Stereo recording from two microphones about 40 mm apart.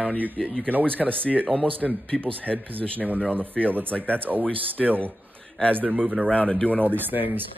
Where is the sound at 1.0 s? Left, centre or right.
Left.